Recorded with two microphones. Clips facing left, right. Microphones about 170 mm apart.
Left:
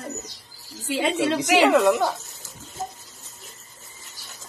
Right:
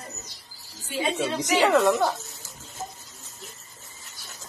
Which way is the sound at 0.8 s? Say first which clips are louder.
Left 4 dB; 85° left.